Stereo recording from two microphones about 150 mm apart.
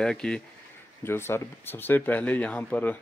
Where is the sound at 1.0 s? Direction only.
15° left (ahead or behind).